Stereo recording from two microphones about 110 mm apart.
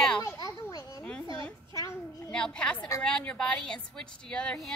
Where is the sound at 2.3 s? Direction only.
10° left (ahead or behind).